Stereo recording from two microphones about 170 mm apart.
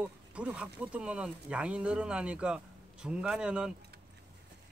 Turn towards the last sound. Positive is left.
turn(degrees=-5)  # may be behind; listen again after turning